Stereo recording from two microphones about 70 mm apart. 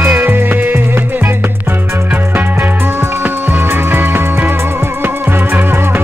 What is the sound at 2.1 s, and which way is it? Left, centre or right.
Music, right.